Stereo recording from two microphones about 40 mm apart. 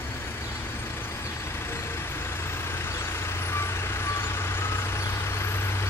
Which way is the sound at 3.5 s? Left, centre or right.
Left.